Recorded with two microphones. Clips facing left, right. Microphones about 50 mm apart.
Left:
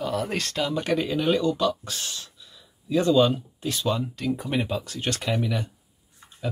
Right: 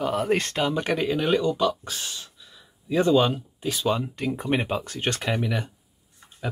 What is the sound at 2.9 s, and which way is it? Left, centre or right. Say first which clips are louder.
Speech: even; right.